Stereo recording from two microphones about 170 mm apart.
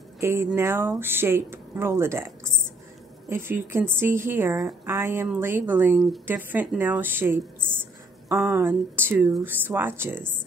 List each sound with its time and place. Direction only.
0.2 s speech: 15° right (ahead or behind)